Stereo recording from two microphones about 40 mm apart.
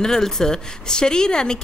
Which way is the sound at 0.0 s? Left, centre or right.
Centre.